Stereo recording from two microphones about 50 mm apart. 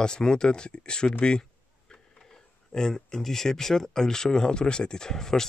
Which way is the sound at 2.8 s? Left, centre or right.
Centre.